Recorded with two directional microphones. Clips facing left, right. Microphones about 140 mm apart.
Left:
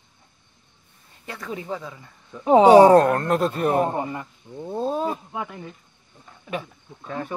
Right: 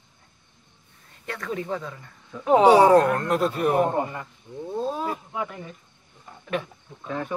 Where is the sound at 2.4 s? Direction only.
25° left (ahead or behind).